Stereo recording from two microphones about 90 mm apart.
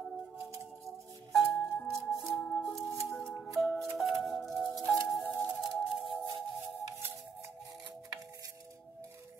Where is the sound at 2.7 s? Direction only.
30° left (ahead or behind).